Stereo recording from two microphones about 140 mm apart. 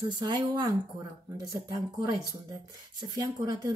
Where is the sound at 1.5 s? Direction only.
25° right (ahead or behind).